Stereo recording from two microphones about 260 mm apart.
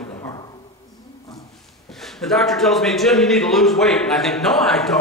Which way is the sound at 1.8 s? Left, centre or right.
Centre.